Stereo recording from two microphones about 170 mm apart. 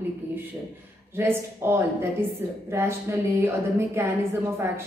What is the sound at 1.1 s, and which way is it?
A woman's voice, 15° right (ahead or behind).